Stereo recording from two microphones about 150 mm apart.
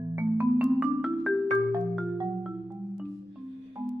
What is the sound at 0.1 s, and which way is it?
Music, 10° right (ahead or behind).